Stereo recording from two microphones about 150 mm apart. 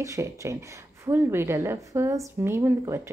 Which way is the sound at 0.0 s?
20° right (ahead or behind).